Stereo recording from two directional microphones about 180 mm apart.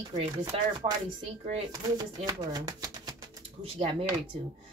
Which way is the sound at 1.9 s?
20° right (ahead or behind).